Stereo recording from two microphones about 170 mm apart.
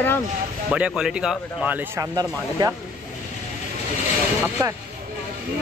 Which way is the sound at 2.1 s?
20° right (ahead or behind).